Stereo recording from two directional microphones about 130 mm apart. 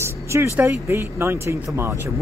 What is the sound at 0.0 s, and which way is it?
Vehicle, 20° right (ahead or behind).